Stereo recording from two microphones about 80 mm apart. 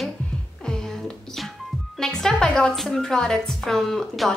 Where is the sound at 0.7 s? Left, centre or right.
Centre.